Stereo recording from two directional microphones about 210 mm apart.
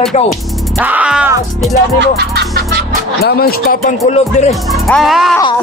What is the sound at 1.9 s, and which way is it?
Music, 50° right (ahead or behind).